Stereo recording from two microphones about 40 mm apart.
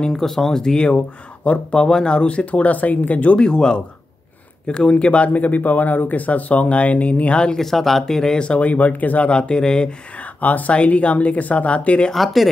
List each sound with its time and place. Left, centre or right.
0.2 s speech: centre; by 3.3 s left
3.3 s speech: left
7.5 s speech: centre
8.0 s speech: centre
8.4 s speech: left
9.3 s speech: centre
10.1 s speech: left
12.1 s speech: centre